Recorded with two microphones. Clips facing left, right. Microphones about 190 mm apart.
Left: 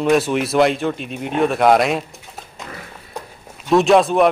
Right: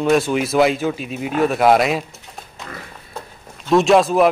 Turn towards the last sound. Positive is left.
turn(degrees=0)  # may be behind; listen again after turning